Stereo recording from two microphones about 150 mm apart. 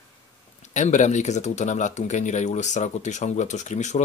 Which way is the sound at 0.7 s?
55° left (ahead or behind).